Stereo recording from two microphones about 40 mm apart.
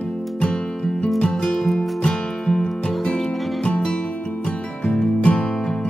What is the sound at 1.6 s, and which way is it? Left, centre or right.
Music, centre.